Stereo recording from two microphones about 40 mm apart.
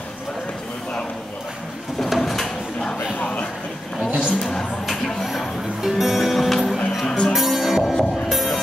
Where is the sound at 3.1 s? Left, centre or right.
Left.